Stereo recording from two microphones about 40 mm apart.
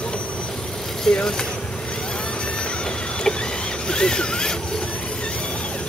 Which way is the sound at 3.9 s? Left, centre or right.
Left.